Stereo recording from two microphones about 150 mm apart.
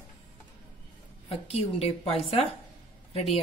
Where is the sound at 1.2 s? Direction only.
40° left (ahead or behind).